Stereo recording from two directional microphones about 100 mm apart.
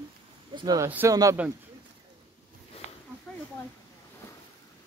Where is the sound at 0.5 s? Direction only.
40° right (ahead or behind).